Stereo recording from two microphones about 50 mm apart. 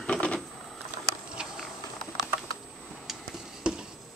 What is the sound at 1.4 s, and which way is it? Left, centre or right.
Patter, centre.